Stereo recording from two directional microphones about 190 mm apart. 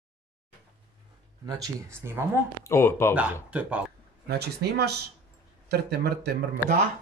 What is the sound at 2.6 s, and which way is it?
Speech, 15° left (ahead or behind).